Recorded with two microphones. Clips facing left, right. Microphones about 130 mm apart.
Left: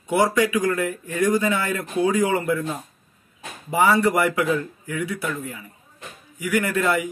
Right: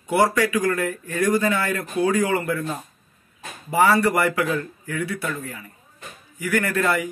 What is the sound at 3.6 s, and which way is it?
Speech, 15° left (ahead or behind).